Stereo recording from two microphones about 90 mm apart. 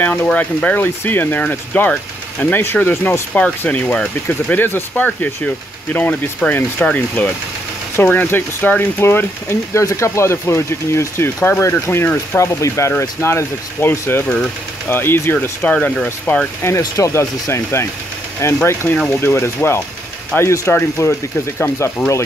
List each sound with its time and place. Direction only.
0.0 s speech: 20° left (ahead or behind)
15.6 s speech: 15° left (ahead or behind)
16.6 s speech: 35° left (ahead or behind)